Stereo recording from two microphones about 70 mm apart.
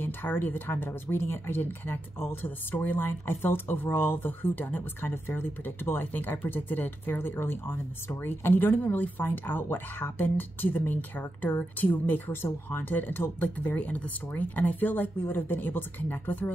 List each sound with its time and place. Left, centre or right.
0.0 s speech: left